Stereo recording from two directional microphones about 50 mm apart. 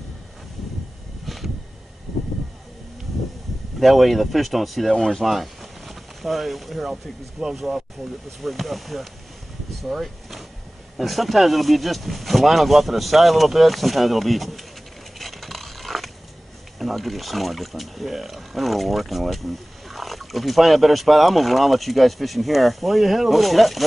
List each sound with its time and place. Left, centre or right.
1.2 s a sound: centre
3.8 s speech: centre
9.8 s vehicle: centre
11.0 s speech: centre
15.1 s a sound: centre
16.7 s speech: centre